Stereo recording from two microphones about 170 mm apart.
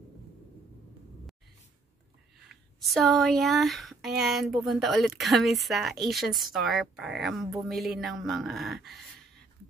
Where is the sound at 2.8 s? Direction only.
Centre (ahead or behind).